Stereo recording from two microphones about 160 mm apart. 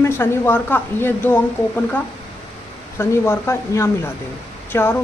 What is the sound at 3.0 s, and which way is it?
Speech, 15° left (ahead or behind).